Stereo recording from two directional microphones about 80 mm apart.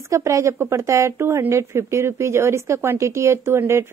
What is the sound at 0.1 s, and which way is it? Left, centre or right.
Speech, right.